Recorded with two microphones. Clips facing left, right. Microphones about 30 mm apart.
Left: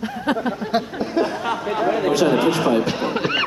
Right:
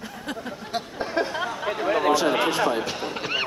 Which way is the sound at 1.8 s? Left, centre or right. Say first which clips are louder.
Left 3 dB; centre.